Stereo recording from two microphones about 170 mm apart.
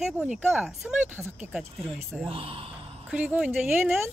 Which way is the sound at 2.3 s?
35° right (ahead or behind).